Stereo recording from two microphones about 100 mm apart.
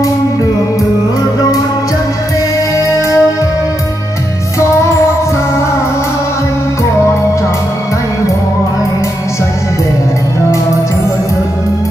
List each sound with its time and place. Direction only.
2.8 s music: 30° left (ahead or behind)